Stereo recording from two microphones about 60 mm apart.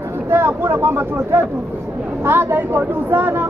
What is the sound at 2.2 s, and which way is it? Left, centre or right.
Speech, right.